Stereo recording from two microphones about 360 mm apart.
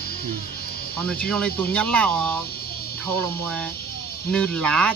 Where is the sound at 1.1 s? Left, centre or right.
Centre.